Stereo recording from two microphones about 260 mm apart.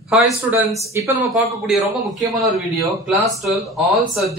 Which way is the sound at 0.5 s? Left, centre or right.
Centre.